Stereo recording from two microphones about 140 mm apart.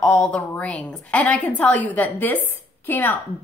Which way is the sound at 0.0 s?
5° left (ahead or behind).